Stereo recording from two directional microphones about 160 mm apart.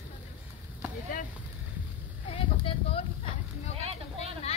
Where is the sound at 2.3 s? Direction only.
35° left (ahead or behind).